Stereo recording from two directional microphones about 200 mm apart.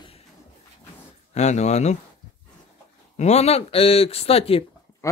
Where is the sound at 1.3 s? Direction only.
35° left (ahead or behind).